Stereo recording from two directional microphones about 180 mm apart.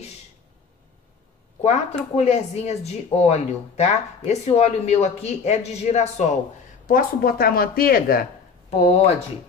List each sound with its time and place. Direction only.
1.6 s speech: 35° left (ahead or behind)
6.9 s speech: 55° left (ahead or behind)
8.6 s speech: 35° left (ahead or behind)